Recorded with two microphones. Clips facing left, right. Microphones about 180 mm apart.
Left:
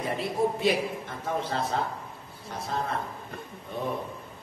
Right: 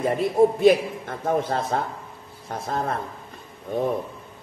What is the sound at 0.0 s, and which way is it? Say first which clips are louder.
A man's voice: right 8 dB; 50° right (ahead or behind).